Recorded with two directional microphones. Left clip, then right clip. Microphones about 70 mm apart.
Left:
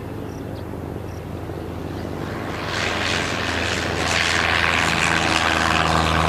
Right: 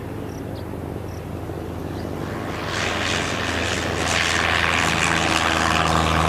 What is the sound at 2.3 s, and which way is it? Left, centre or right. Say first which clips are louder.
Vehicle: left 1 dB; centre.